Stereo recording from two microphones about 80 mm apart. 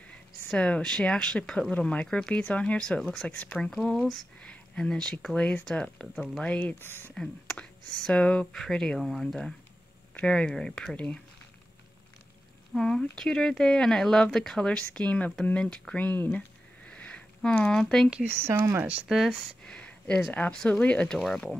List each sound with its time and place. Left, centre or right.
0.5 s speech: centre
3.7 s speech: centre; by 7.2 s left
7.2 s speech: centre
12.7 s speech: centre
15.4 s a sound: centre
17.6 s speech: centre
18.2 s speech: right
19.0 s speech: centre
19.6 s a sound: centre
20.2 s speech: centre